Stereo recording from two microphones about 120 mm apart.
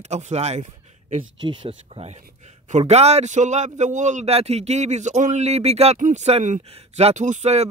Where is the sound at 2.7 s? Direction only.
70° right (ahead or behind).